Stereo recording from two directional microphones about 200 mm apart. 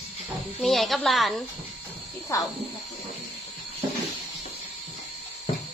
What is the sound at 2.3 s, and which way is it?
Speech, 15° left (ahead or behind).